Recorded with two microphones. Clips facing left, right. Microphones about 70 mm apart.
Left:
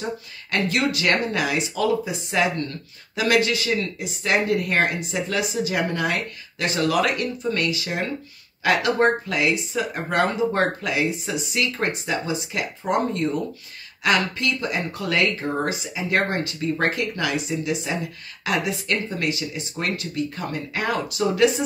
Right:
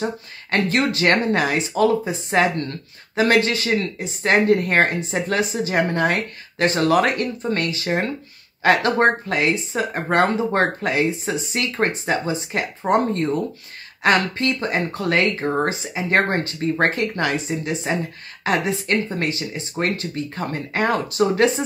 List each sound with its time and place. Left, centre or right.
0.0 s speech: right